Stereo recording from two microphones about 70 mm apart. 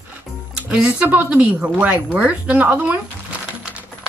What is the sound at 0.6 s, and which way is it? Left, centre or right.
A woman's voice, centre.